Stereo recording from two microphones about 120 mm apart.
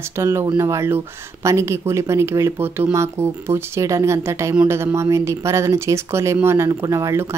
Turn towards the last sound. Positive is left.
turn(degrees=-25)  # may be behind; listen again after turning